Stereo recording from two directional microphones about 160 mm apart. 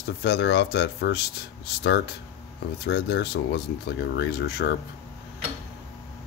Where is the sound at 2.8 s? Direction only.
90° left.